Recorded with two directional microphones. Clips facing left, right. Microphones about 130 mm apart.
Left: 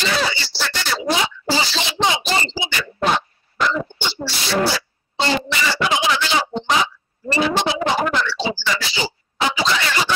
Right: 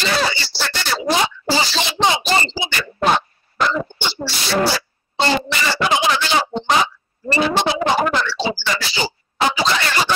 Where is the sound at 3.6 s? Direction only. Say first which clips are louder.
Right 1 dB; 45° right (ahead or behind).